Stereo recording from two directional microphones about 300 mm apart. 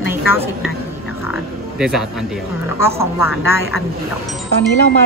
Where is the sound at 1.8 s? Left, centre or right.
Centre.